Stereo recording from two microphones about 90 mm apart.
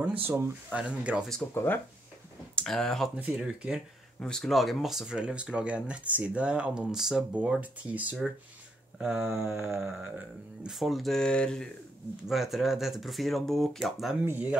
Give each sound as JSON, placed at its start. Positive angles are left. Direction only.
{"t": 0.2, "sound": "music", "side_deg": -25}
{"t": 0.7, "sound": "speech", "side_deg": -15}
{"t": 1.5, "sound": "speech", "side_deg": 25}
{"t": 2.5, "sound": "speech", "side_deg": 5}
{"t": 3.3, "sound": "speech", "side_deg": -10}
{"t": 4.2, "sound": "speech", "side_deg": 5}
{"t": 9.2, "sound": "music", "side_deg": -25}
{"t": 9.8, "sound": "speech", "side_deg": -5}
{"t": 10.0, "sound": "music", "side_deg": -20}
{"t": 10.7, "sound": "speech", "side_deg": 0}
{"t": 12.3, "sound": "speech", "side_deg": 0}
{"t": 14.2, "sound": "music", "side_deg": -20}